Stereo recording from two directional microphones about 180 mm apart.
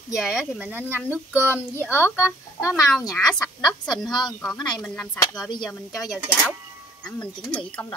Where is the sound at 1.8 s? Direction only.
15° left (ahead or behind).